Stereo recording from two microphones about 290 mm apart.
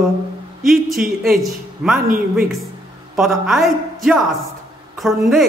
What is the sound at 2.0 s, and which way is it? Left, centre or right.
Speech, right.